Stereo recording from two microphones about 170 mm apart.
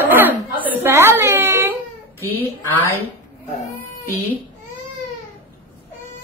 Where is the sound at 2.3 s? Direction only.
10° left (ahead or behind).